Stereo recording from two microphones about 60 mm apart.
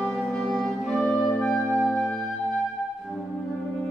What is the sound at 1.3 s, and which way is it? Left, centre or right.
Music, centre.